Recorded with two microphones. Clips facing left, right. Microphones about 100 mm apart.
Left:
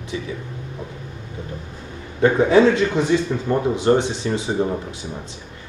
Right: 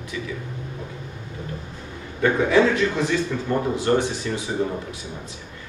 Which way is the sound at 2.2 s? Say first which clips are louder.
Left 4 dB; 25° left (ahead or behind).